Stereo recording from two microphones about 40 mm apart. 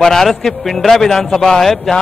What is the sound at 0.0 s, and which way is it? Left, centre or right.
A man's voice, centre.